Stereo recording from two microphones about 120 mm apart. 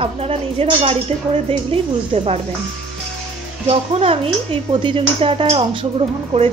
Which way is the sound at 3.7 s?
55° right (ahead or behind).